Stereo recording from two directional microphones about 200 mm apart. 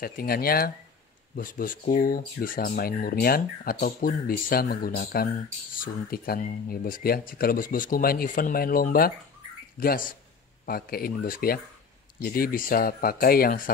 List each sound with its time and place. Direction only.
0.0 s speech: 50° left (ahead or behind)